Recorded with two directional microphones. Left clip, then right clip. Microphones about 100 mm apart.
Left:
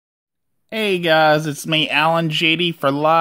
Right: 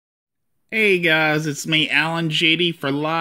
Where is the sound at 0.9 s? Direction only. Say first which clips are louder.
Left 3 dB; 35° left (ahead or behind).